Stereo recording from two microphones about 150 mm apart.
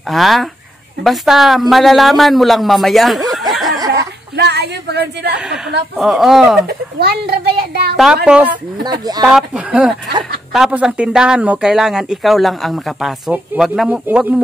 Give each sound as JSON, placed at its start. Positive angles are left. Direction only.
{"t": 0.1, "sound": "a man's voice", "side_deg": 0}
{"t": 3.5, "sound": "a sound", "side_deg": 0}
{"t": 4.4, "sound": "a sound", "side_deg": -90}
{"t": 5.9, "sound": "a man's voice", "side_deg": 0}
{"t": 6.7, "sound": "a child's voice", "side_deg": -90}
{"t": 8.3, "sound": "speech", "side_deg": -10}
{"t": 8.8, "sound": "speech", "side_deg": -25}
{"t": 9.2, "sound": "a man's voice", "side_deg": -5}